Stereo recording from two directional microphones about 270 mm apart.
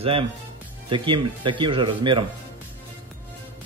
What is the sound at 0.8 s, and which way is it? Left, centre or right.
Speech, centre.